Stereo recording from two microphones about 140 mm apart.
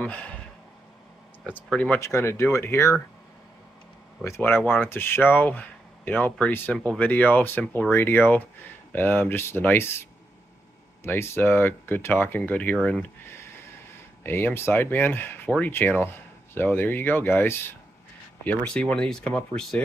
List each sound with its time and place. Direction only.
0.0 s speech: 10° left (ahead or behind)
1.4 s speech: 10° left (ahead or behind)
4.2 s speech: 15° left (ahead or behind)
11.1 s speech: 15° left (ahead or behind)
14.2 s speech: 15° left (ahead or behind)